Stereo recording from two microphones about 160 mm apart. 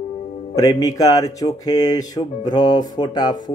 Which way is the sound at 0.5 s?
20° left (ahead or behind).